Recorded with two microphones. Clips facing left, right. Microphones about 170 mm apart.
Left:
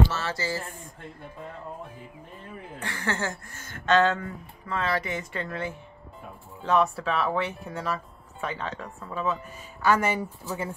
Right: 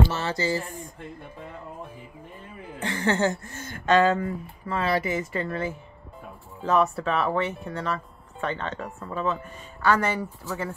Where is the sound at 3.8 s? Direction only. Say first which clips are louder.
Right 2 dB; 10° right (ahead or behind).